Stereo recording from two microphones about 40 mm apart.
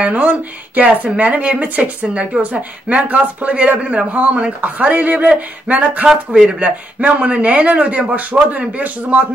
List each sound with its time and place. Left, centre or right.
0.0 s a woman's voice: right
6.0 s speech: centre
6.6 s speech: right